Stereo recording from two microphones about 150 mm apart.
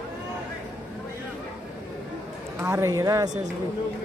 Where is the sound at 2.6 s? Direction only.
20° right (ahead or behind).